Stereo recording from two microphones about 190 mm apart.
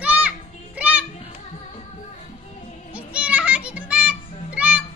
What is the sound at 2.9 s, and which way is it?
Music, 5° right (ahead or behind).